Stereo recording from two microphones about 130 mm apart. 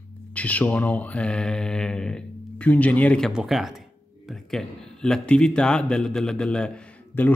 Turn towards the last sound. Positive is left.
turn(degrees=10)  # may be behind; listen again after turning